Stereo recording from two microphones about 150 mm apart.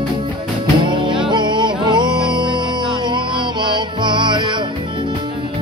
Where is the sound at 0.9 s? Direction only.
30° right (ahead or behind).